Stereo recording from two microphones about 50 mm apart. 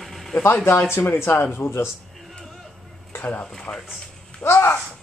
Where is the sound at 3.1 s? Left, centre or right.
Left.